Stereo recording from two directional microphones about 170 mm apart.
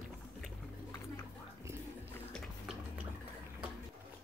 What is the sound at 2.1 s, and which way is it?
Music, 5° left (ahead or behind).